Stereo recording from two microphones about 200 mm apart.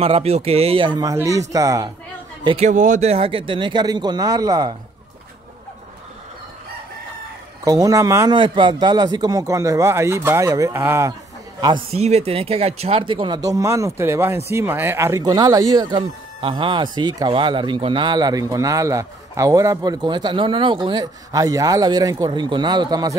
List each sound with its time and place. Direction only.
0.0 s a man's voice: 30° right (ahead or behind)
2.4 s speech: 30° right (ahead or behind)
7.6 s a man's voice: 15° right (ahead or behind)
11.6 s speech: 25° right (ahead or behind)